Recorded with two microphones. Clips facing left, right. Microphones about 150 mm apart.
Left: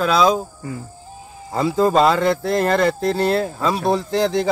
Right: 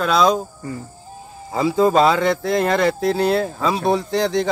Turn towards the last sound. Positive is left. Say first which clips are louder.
# left 1 dB
turn(degrees=0)  # may be behind; listen again after turning